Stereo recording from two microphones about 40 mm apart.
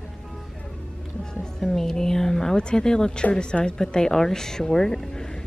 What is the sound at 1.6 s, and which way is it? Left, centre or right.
Speech, centre.